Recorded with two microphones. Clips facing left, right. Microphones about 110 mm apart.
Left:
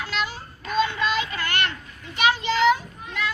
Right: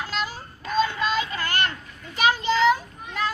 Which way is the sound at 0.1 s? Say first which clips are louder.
Left 1 dB; 40° right (ahead or behind).